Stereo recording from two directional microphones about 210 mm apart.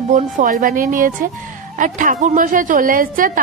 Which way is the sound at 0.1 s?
40° right (ahead or behind).